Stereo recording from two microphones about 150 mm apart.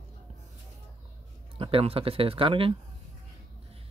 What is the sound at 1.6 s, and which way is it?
Speech, 40° right (ahead or behind).